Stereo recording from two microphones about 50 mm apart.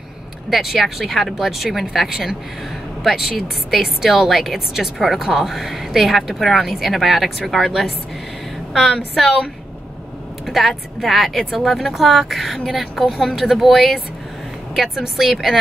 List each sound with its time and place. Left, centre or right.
0.5 s a woman's voice: centre
10.4 s a woman's voice: centre